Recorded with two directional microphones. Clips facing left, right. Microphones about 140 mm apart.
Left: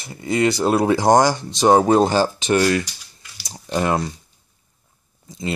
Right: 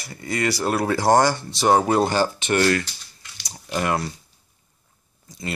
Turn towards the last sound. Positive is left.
turn(degrees=20)  # may be behind; listen again after turning